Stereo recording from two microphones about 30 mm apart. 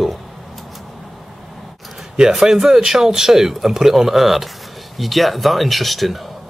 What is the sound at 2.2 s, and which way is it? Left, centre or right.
Speech, centre.